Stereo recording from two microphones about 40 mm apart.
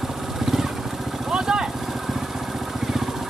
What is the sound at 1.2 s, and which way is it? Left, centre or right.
Vehicle, centre.